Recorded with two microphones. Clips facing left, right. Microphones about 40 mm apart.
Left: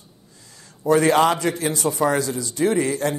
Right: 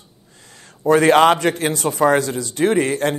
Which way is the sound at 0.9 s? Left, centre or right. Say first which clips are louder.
Right 4 dB; right.